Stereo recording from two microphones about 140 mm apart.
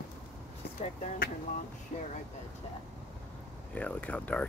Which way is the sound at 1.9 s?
50° left (ahead or behind).